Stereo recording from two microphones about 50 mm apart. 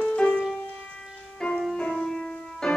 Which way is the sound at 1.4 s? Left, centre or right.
Centre.